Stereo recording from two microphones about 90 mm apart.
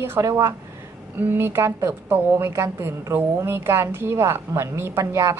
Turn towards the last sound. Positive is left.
turn(degrees=-30)  # may be behind; listen again after turning